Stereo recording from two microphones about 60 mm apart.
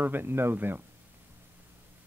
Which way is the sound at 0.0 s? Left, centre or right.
Right.